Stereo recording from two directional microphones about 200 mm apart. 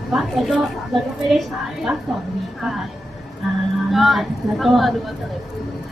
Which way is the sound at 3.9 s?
Centre (ahead or behind).